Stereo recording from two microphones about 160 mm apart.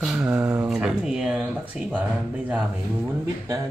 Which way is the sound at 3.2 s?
20° right (ahead or behind).